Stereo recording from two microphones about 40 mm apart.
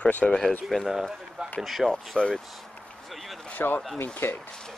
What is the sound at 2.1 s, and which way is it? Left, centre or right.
Speech, centre.